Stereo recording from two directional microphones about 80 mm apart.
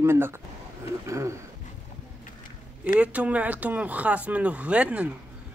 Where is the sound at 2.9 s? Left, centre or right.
Centre.